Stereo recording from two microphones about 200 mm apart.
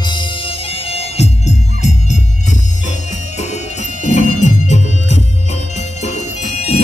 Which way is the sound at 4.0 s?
35° left (ahead or behind).